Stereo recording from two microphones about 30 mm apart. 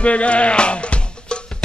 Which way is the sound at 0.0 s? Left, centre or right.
Left.